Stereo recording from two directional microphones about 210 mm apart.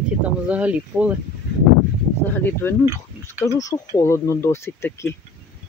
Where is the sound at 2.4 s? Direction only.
10° left (ahead or behind).